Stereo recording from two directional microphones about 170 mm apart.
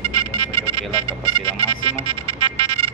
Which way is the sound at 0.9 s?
30° right (ahead or behind).